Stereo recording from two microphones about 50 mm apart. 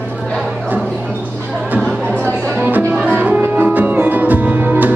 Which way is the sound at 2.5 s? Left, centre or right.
Right.